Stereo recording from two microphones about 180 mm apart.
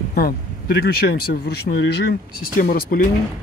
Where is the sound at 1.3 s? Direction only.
65° left (ahead or behind).